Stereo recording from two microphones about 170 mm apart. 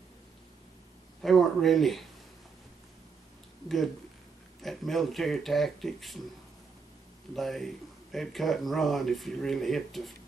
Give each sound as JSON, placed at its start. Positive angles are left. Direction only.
{"t": 1.2, "sound": "speech", "side_deg": 0}
{"t": 3.6, "sound": "speech", "side_deg": 0}
{"t": 7.3, "sound": "speech", "side_deg": 0}